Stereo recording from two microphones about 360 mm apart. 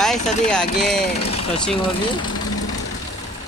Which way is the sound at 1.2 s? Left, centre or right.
Left.